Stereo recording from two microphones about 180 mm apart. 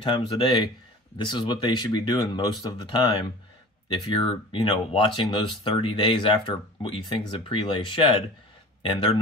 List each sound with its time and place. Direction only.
0.0 s speech: 25° left (ahead or behind)